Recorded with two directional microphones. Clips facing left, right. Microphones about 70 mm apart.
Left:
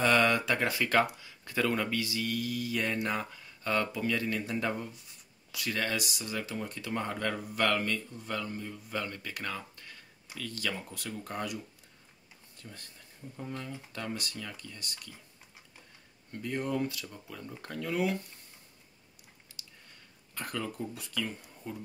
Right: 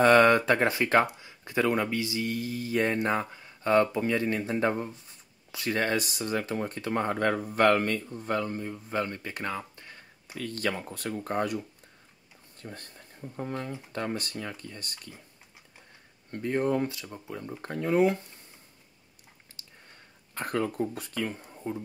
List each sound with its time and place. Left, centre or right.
0.0 s speech: right
10.2 s speech: right
16.3 s speech: right
16.9 s speech: right
19.6 s a sound: right
20.3 s speech: right